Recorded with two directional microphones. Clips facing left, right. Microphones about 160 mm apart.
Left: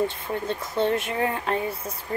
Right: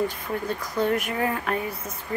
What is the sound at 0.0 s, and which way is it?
Speech, 25° left (ahead or behind).